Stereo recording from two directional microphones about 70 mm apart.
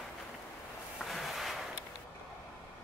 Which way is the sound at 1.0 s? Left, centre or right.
Centre.